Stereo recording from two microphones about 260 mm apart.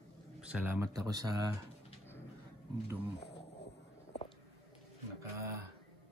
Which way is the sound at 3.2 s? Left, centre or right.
Left.